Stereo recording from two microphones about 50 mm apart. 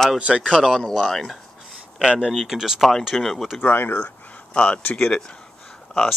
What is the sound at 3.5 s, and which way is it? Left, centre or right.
Speech, left.